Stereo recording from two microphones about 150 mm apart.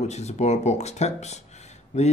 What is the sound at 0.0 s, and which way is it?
Speech, 50° left (ahead or behind).